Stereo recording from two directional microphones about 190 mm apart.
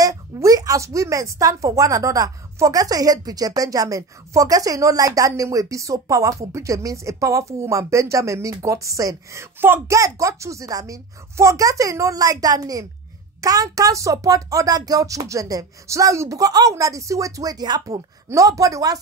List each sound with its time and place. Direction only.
0.0 s a woman's voice: 15° right (ahead or behind)